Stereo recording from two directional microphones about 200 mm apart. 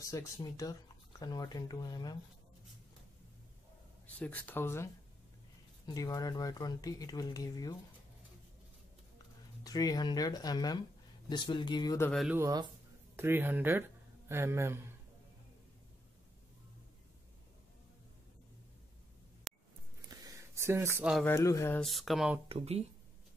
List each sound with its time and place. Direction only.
0.0 s speech: 15° left (ahead or behind)
4.2 s speech: 10° left (ahead or behind)
9.6 s speech: 20° left (ahead or behind)
12.1 s speech: centre (ahead or behind)
12.4 s speech: 15° right (ahead or behind)
19.5 s a sound: centre (ahead or behind)
20.1 s a sound: 20° right (ahead or behind)
21.1 s speech: 10° left (ahead or behind)
21.7 s speech: centre (ahead or behind)
22.5 s speech: 30° right (ahead or behind)